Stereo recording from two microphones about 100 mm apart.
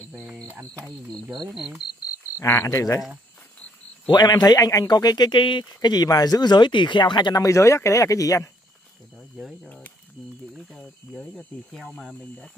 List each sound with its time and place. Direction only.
1.3 s speech: 5° right (ahead or behind)
2.3 s speech: 25° left (ahead or behind)
4.1 s speech: 45° left (ahead or behind)
5.7 s speech: 40° left (ahead or behind)
7.4 s speech: 30° left (ahead or behind)
9.4 s speech: 5° right (ahead or behind)